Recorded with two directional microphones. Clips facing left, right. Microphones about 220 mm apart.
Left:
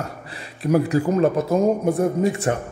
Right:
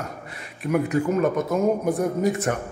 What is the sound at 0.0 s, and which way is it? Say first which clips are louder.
A man's voice: left 2 dB; 30° left (ahead or behind).